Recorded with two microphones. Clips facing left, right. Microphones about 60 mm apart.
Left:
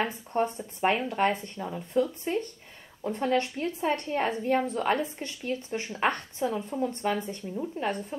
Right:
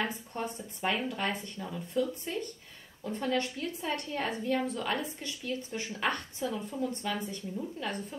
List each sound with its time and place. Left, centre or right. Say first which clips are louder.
0.3 s a woman's voice: left 9 dB; left